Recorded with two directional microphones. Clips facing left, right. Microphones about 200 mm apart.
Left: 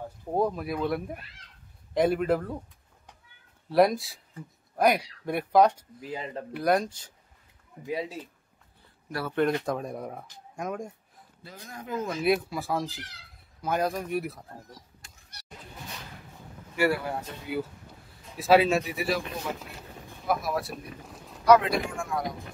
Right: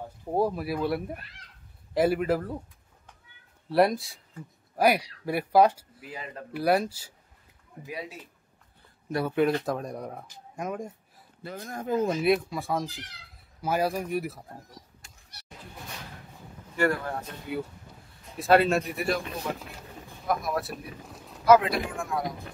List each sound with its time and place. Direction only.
0.3 s speech: 5° right (ahead or behind)
3.7 s speech: centre (ahead or behind)
6.0 s speech: 25° left (ahead or behind)
6.5 s speech: 5° right (ahead or behind)
7.8 s speech: 25° left (ahead or behind)
9.3 s speech: 5° right (ahead or behind)
11.4 s a man's voice: 50° right (ahead or behind)
11.9 s speech: 30° right (ahead or behind)
12.2 s speech: centre (ahead or behind)
16.3 s speech: 5° left (ahead or behind)
20.2 s speech: centre (ahead or behind)